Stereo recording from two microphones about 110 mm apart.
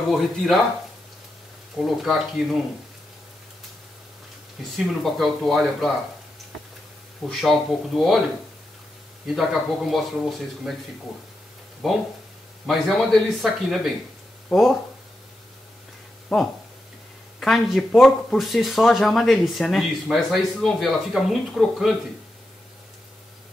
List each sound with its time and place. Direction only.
1.8 s speech: centre (ahead or behind)
4.7 s speech: centre (ahead or behind)
7.2 s speech: centre (ahead or behind)
9.3 s speech: centre (ahead or behind)
11.8 s speech: centre (ahead or behind)
16.3 s speech: centre (ahead or behind)